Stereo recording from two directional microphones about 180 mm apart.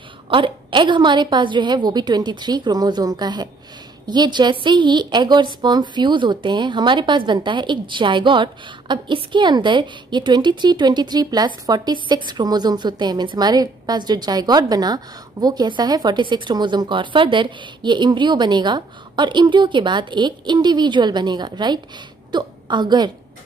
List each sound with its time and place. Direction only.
0.3 s a woman's voice: 25° right (ahead or behind)